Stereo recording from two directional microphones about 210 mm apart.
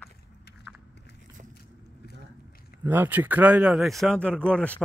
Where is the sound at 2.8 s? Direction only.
10° right (ahead or behind).